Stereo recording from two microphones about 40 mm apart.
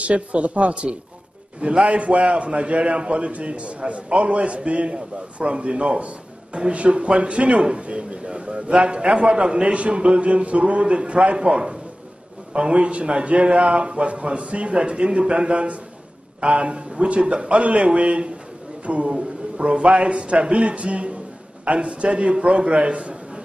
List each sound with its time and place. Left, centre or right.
0.0 s a man's voice: right